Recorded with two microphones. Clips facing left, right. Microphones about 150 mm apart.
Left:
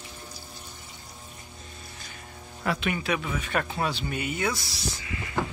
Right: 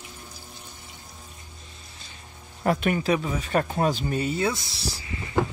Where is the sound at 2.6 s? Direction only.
45° right (ahead or behind).